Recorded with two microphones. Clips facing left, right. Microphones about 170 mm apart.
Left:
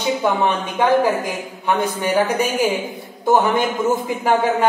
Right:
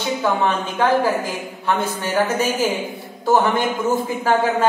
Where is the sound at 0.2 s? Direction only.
15° left (ahead or behind).